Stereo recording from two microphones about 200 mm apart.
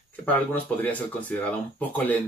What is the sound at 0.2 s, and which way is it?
Speech, 10° left (ahead or behind).